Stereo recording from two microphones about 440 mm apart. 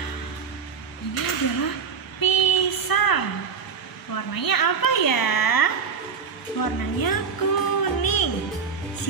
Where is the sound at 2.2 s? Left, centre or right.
Left.